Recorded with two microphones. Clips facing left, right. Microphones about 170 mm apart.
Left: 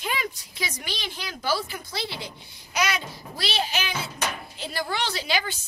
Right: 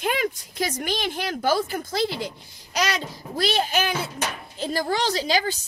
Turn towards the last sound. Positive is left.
turn(degrees=-40)  # may be behind; listen again after turning